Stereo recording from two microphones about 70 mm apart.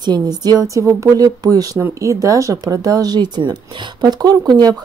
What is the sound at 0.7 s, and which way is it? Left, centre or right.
Speech, right.